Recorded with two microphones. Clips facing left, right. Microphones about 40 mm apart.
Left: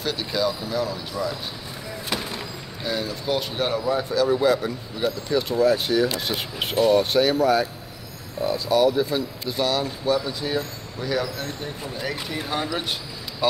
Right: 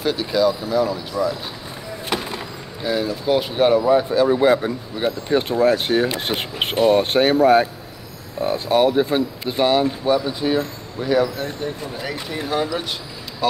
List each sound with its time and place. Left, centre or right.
0.0 s speech: centre
2.0 s vehicle: centre
3.8 s speech: right
11.6 s speech: centre